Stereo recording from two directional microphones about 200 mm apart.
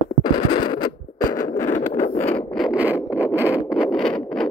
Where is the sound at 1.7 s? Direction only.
35° left (ahead or behind).